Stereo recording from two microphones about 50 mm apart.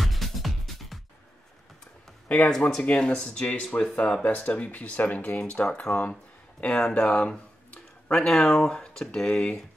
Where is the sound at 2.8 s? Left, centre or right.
Left.